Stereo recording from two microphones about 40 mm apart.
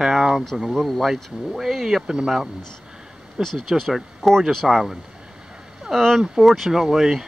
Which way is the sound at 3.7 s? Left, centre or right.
Centre.